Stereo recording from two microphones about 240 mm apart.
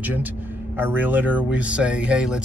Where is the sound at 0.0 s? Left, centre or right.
Centre.